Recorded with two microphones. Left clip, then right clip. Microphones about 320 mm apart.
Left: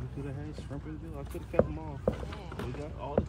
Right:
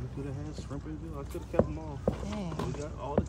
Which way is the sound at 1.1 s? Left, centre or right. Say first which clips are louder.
Left 1 dB; centre.